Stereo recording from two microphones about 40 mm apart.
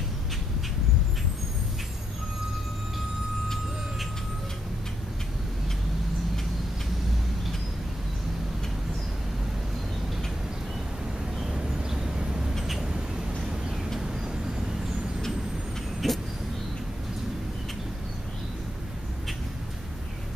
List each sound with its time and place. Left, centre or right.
11.3 s vehicle: centre
12.8 s a sound: right
16.0 s vehicle: centre